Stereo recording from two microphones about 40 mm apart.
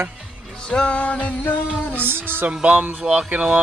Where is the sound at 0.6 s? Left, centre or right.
Left.